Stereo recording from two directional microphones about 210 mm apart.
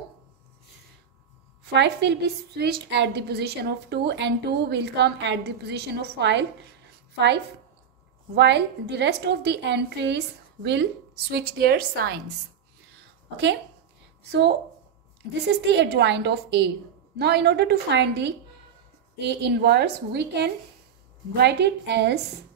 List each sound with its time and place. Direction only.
1.6 s a woman's voice: 55° right (ahead or behind)
8.4 s a woman's voice: 55° right (ahead or behind)
15.6 s a woman's voice: 55° right (ahead or behind)